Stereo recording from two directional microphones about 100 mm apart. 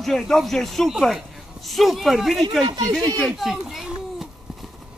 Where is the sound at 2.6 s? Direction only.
45° right (ahead or behind).